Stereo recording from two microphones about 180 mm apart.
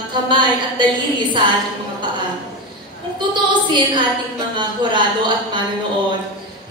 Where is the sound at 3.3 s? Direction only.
25° right (ahead or behind).